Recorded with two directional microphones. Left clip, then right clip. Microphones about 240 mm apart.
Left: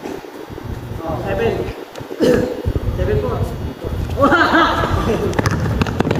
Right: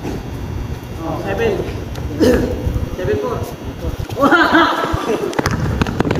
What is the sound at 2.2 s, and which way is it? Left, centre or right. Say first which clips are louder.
Speech: right 1 dB; right.